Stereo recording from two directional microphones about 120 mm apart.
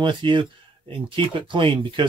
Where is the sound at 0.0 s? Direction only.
40° right (ahead or behind).